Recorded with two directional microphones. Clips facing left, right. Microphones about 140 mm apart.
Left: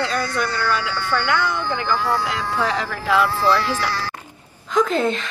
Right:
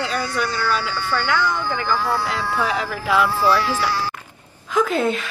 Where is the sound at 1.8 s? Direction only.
10° right (ahead or behind).